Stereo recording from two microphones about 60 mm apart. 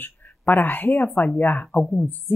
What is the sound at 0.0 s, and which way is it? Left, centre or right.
Speech, left.